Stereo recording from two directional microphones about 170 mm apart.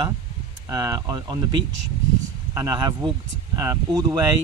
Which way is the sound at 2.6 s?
25° right (ahead or behind).